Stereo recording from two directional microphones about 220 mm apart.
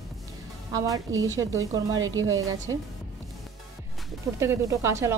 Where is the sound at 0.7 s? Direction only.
15° right (ahead or behind).